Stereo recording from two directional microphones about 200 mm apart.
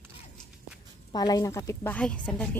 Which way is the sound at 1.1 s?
20° left (ahead or behind).